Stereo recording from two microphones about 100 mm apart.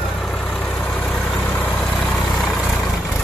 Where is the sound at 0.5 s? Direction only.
15° left (ahead or behind).